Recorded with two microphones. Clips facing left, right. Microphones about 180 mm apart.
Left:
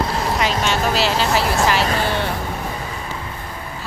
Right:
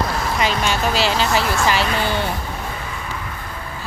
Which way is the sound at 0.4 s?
Centre (ahead or behind).